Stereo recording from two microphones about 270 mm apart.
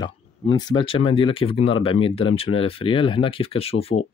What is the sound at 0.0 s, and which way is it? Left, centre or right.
Speech, centre.